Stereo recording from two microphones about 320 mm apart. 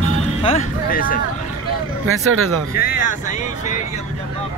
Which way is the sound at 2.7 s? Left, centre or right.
Left.